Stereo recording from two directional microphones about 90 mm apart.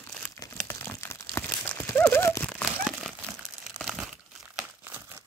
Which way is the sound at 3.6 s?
5° right (ahead or behind).